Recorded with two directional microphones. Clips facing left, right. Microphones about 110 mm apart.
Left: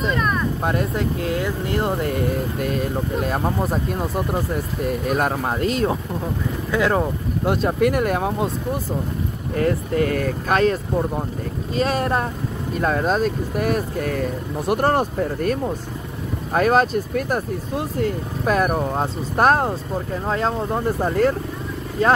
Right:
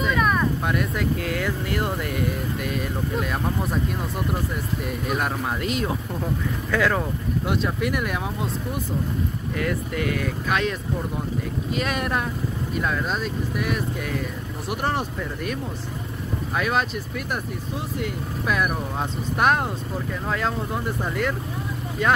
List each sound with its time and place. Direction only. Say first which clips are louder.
0.1 s vehicle: right 2 dB; 5° right (ahead or behind)
0.7 s speech: left 2 dB; 30° left (ahead or behind)
6.7 s speech: left 3 dB; 25° left (ahead or behind)
7.4 s speech: left 8 dB; 40° left (ahead or behind)
9.6 s speech: left 7 dB; 35° left (ahead or behind)